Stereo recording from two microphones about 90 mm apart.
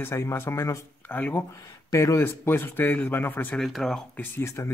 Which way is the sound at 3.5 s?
Centre (ahead or behind).